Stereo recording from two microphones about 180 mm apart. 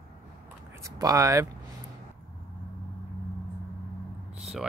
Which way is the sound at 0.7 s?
15° right (ahead or behind).